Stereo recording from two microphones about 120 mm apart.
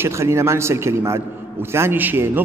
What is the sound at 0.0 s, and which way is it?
A man's voice, 25° right (ahead or behind).